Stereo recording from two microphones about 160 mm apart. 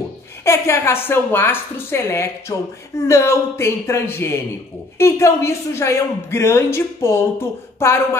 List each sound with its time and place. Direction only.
0.5 s speech: 15° left (ahead or behind)